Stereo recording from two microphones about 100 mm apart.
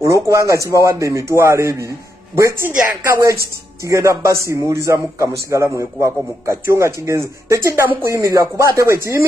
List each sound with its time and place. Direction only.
0.0 s a man's voice: 35° right (ahead or behind)